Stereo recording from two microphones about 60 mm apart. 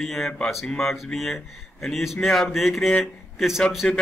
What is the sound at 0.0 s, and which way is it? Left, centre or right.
Speech, centre.